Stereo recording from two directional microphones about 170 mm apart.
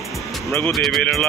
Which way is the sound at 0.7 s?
Centre (ahead or behind).